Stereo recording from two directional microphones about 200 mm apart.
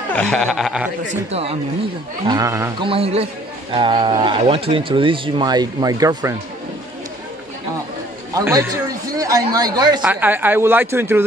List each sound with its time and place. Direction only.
0.1 s speech: 5° left (ahead or behind)
1.3 s speech: 30° right (ahead or behind)
2.2 s speech: 15° right (ahead or behind)
2.9 s speech: 30° right (ahead or behind)
8.4 s speech: 15° right (ahead or behind)
10.0 s speech: 10° right (ahead or behind)